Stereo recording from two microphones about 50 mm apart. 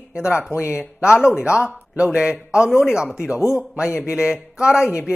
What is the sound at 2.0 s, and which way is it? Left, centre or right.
Speech, centre.